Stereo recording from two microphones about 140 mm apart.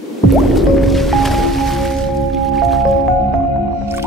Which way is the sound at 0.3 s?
Centre (ahead or behind).